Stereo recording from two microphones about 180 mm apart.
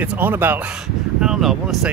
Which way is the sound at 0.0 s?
10° right (ahead or behind).